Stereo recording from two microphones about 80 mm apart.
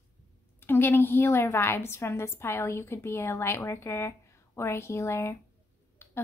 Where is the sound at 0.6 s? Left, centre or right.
Left.